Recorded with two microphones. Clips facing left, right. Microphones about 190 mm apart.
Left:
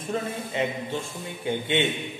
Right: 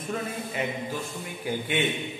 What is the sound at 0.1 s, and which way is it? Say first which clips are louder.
A man's voice: left 3 dB; 25° left (ahead or behind).